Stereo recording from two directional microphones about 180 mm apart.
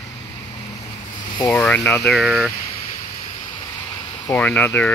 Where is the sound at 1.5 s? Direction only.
10° left (ahead or behind).